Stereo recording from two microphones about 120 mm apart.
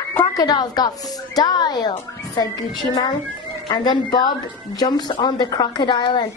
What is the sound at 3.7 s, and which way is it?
Speech, 35° left (ahead or behind).